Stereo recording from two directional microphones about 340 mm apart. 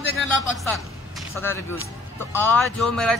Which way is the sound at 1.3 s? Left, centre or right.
Centre.